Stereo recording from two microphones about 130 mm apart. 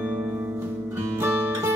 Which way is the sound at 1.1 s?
15° right (ahead or behind).